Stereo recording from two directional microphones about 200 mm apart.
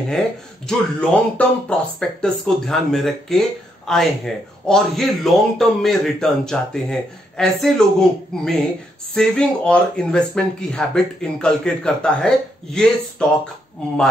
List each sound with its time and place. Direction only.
0.7 s speech: 5° left (ahead or behind)